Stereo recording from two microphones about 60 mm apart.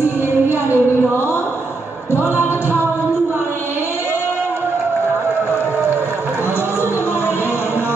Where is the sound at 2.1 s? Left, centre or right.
Left.